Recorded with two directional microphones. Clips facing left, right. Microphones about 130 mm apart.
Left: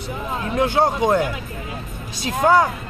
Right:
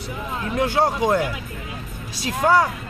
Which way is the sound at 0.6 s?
25° left (ahead or behind).